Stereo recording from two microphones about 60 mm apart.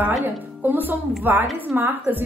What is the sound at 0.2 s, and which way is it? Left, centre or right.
A woman's voice, right.